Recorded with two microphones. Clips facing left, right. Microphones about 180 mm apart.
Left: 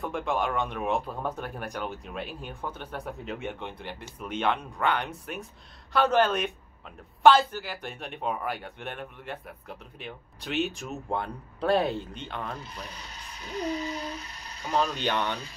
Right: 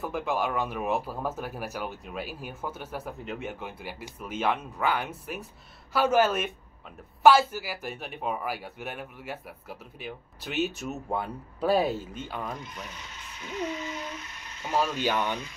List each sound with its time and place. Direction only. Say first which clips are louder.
0.0 s speech: even; 5° right (ahead or behind)
12.5 s speech: even; 35° left (ahead or behind)
15.0 s speech: right 1 dB; 5° right (ahead or behind)